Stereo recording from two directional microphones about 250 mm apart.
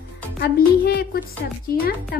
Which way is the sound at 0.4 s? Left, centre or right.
Left.